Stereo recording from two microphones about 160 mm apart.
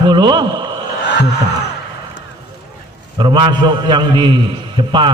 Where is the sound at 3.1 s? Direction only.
30° right (ahead or behind).